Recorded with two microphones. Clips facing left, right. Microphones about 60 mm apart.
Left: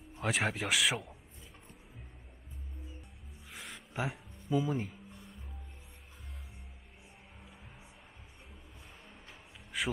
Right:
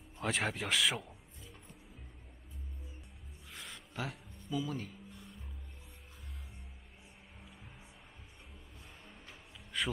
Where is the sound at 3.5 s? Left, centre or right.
Centre.